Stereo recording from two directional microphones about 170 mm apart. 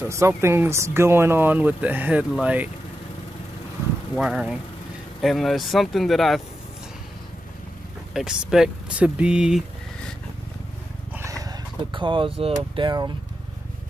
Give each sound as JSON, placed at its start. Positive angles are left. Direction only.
{"t": 0.0, "sound": "speech", "side_deg": -15}
{"t": 4.1, "sound": "speech", "side_deg": -5}
{"t": 8.1, "sound": "speech", "side_deg": -5}
{"t": 11.1, "sound": "speech", "side_deg": -20}